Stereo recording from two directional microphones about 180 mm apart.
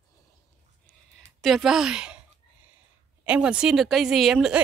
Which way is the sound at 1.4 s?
Centre (ahead or behind).